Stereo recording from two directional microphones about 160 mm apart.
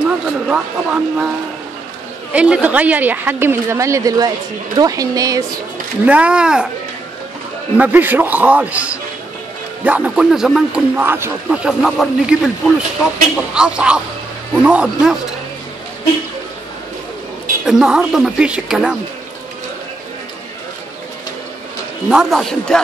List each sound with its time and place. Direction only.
0.0 s speech: 5° right (ahead or behind)
2.3 s a woman's voice: 5° right (ahead or behind)
6.0 s a woman's voice: 10° right (ahead or behind)
7.7 s a woman's voice: 10° right (ahead or behind)
11.0 s speech: 15° right (ahead or behind)
17.6 s speech: 5° right (ahead or behind)
22.1 s speech: 5° right (ahead or behind)